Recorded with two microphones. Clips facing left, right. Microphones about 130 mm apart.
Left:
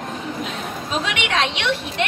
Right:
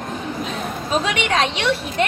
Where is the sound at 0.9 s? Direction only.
40° right (ahead or behind).